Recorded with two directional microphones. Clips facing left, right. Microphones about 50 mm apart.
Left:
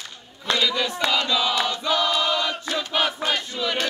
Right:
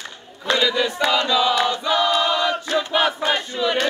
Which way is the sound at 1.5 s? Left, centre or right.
Centre.